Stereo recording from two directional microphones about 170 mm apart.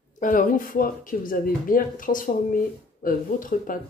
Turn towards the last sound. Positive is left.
turn(degrees=55)  # may be behind; listen again after turning